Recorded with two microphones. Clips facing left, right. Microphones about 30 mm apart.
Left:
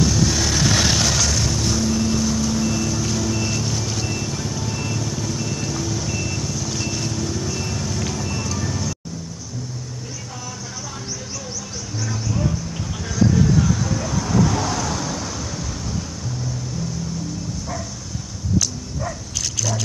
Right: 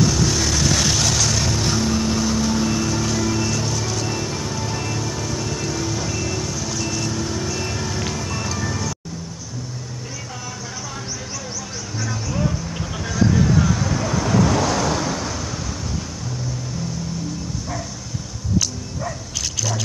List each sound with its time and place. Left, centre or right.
0.0 s vehicle: centre
0.7 s vehicle: centre
0.9 s vehicle: centre
1.2 s vehicle: centre
6.7 s vehicle: centre
7.1 s music: centre
12.0 s vehicle: centre
14.2 s vehicle: right
14.5 s vehicle: right
15.0 s vehicle: centre